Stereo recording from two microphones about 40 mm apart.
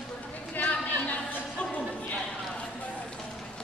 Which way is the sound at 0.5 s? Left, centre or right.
Left.